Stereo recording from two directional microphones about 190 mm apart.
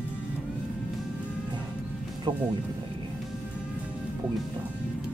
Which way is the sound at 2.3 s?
20° right (ahead or behind).